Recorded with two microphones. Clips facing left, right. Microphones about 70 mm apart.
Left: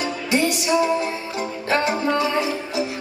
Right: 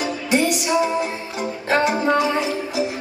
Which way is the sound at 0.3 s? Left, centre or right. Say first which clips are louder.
Right 1 dB; centre.